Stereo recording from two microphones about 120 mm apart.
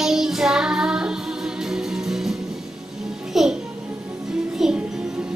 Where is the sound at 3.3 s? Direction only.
5° right (ahead or behind).